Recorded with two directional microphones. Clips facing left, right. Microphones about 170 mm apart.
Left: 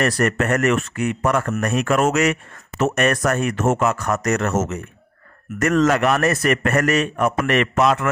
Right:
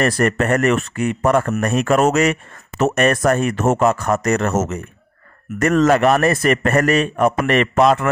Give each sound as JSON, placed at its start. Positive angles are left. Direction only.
{"t": 0.0, "sound": "a man's voice", "side_deg": -30}